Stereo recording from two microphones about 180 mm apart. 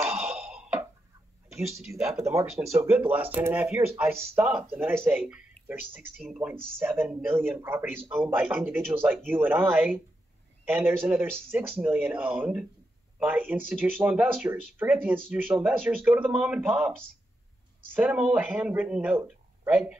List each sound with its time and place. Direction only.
0.2 s a sound: 5° right (ahead or behind)
2.0 s speech: 15° right (ahead or behind); by 6.5 s centre (ahead or behind)
6.8 s a man's voice: 10° right (ahead or behind)
17.9 s speech: 10° right (ahead or behind)